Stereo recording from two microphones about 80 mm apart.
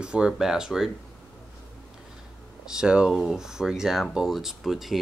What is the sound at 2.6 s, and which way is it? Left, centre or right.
Speech, centre.